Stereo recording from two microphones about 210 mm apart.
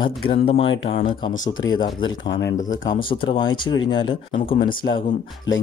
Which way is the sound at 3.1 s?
25° left (ahead or behind).